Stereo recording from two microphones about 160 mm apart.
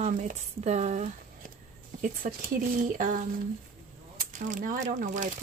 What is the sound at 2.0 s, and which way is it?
Speech, 60° right (ahead or behind).